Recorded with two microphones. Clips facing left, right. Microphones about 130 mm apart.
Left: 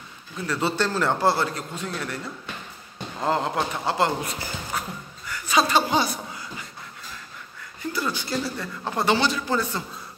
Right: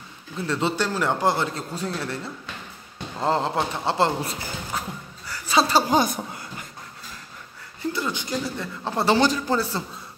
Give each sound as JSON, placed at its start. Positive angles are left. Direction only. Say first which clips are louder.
{"t": 0.5, "sound": "speech", "louder": "even", "side_deg": -20}
{"t": 1.7, "sound": "a man's voice", "louder": "right 2 dB", "side_deg": -35}
{"t": 3.2, "sound": "speech", "louder": "right 1 dB", "side_deg": -30}
{"t": 4.7, "sound": "a sound", "louder": "even", "side_deg": -30}
{"t": 7.8, "sound": "speech", "louder": "right 1 dB", "side_deg": -20}